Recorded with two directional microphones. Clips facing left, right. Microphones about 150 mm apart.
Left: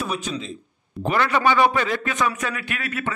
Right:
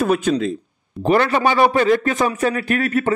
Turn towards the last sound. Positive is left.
turn(degrees=-40)  # may be behind; listen again after turning